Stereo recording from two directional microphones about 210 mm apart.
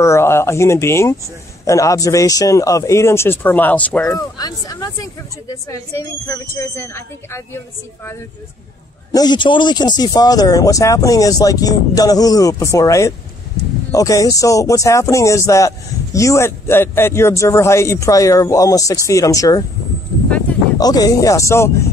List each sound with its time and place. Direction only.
0.0 s speech: 15° left (ahead or behind)
4.4 s speech: 20° left (ahead or behind)
9.1 s speech: 20° left (ahead or behind)
20.8 s speech: 20° left (ahead or behind)